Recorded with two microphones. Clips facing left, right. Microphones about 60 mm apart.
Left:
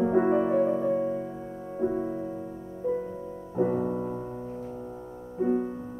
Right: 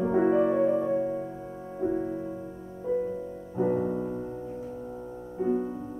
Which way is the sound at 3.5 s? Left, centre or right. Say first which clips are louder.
Even; centre.